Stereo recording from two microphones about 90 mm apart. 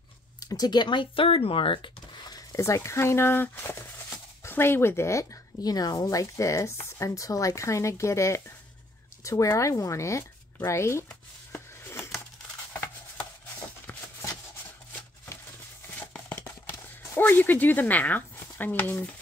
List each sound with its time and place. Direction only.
0.4 s speech: 45° left (ahead or behind); by 1.9 s 80° left
2.2 s speech: 40° left (ahead or behind)
16.3 s clip-clop: 30° left (ahead or behind)
17.2 s speech: 20° left (ahead or behind)